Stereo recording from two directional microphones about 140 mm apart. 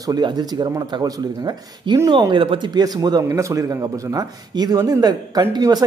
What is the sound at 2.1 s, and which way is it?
A man's voice, 30° right (ahead or behind).